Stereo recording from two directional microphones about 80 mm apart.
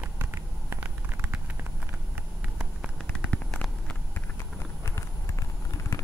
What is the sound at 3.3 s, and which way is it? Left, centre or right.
Vehicle, centre.